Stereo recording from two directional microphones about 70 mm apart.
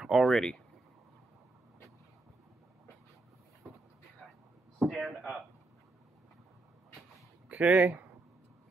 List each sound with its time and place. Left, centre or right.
0.0 s speech: centre
4.8 s speech: centre
7.4 s speech: centre